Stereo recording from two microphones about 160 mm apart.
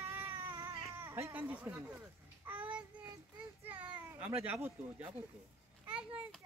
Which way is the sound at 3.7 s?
10° right (ahead or behind).